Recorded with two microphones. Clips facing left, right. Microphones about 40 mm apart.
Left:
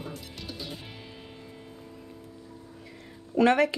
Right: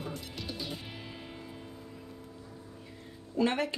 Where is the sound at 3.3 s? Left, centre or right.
Left.